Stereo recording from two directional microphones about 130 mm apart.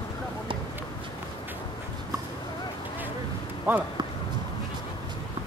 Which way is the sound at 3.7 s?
15° right (ahead or behind).